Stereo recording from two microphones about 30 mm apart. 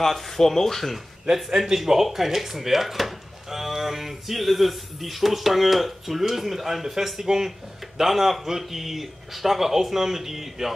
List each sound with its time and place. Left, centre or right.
0.0 s speech: centre
1.5 s speech: centre